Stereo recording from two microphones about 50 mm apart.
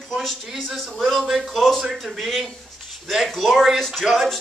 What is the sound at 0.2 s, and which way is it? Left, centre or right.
Speech, centre.